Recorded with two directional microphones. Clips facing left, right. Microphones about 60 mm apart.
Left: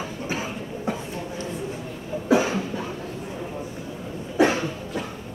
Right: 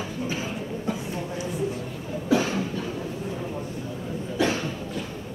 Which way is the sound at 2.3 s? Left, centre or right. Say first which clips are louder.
Left 3 dB; centre.